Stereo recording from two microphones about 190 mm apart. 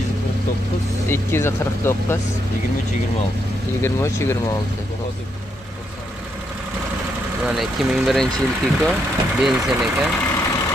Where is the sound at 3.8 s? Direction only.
15° left (ahead or behind).